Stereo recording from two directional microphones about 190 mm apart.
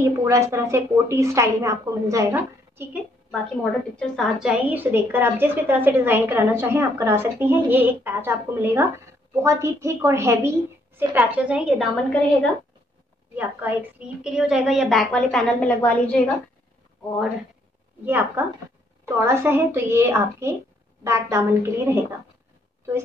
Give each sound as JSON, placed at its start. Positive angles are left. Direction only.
{"t": 0.0, "sound": "a woman's voice", "side_deg": -15}
{"t": 4.0, "sound": "a woman's voice", "side_deg": 0}
{"t": 13.4, "sound": "a woman's voice", "side_deg": -10}
{"t": 18.0, "sound": "a woman's voice", "side_deg": -10}